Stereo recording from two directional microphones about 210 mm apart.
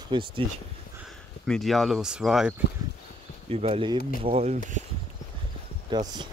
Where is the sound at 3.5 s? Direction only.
30° right (ahead or behind).